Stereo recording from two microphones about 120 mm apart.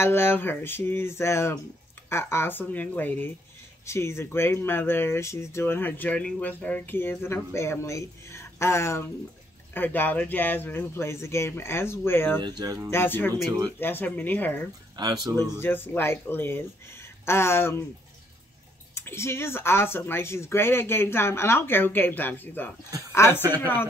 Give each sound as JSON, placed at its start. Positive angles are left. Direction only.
{"t": 0.0, "sound": "speech", "side_deg": 20}
{"t": 12.4, "sound": "speech", "side_deg": -35}
{"t": 12.9, "sound": "speech", "side_deg": 20}
{"t": 15.0, "sound": "speech", "side_deg": -35}
{"t": 15.3, "sound": "speech", "side_deg": 20}
{"t": 18.9, "sound": "speech", "side_deg": 20}